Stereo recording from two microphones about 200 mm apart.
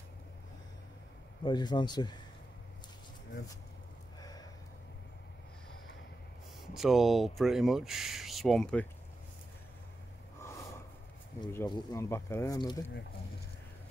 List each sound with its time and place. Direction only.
1.4 s speech: 20° left (ahead or behind)
4.2 s a sound: 20° left (ahead or behind)
6.6 s speech: centre (ahead or behind)
11.4 s speech: 20° left (ahead or behind)